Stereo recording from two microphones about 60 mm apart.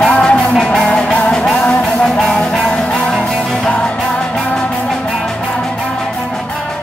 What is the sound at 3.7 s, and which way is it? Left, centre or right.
Music, centre.